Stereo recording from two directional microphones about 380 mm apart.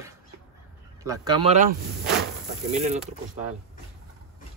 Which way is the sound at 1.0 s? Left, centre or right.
Centre.